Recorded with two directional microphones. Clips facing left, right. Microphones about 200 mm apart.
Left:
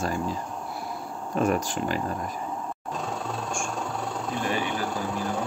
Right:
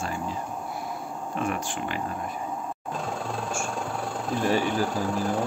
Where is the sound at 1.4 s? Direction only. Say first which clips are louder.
Left 6 dB; 40° left (ahead or behind).